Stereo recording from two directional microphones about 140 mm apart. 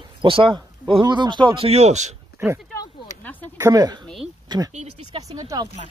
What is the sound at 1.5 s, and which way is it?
Speech, 45° right (ahead or behind).